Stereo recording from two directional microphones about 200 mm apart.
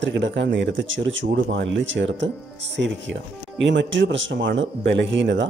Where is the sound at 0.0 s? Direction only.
65° right (ahead or behind).